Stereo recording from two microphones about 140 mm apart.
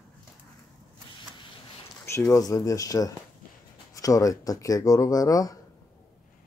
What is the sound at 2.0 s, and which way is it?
Speech, 20° left (ahead or behind).